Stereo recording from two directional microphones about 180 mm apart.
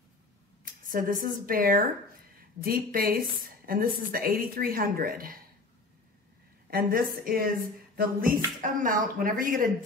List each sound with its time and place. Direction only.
0.8 s a woman's voice: 50° right (ahead or behind)
6.7 s a woman's voice: 55° right (ahead or behind)